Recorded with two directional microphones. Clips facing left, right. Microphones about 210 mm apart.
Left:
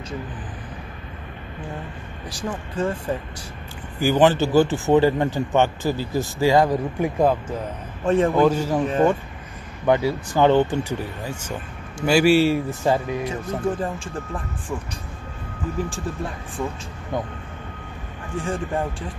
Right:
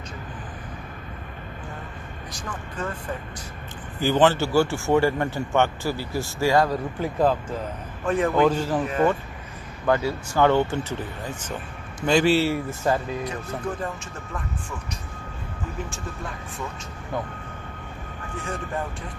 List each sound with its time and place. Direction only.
2.4 s speech: 25° left (ahead or behind)
4.0 s speech: 10° left (ahead or behind)
8.0 s a man's voice: 30° left (ahead or behind)
8.3 s speech: 10° left (ahead or behind)
9.8 s speech: 15° left (ahead or behind)
13.2 s speech: 30° left (ahead or behind)
18.3 s speech: 30° left (ahead or behind)